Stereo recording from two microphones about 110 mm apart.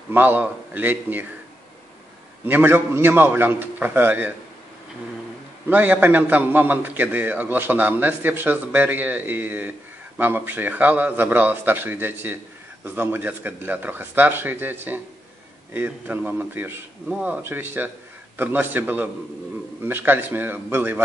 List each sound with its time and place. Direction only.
0.1 s a man's voice: 15° right (ahead or behind)
2.4 s speech: 20° right (ahead or behind)
5.7 s a man's voice: 15° right (ahead or behind)